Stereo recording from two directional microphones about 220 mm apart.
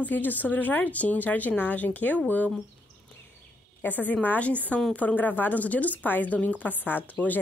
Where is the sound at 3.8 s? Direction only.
10° left (ahead or behind).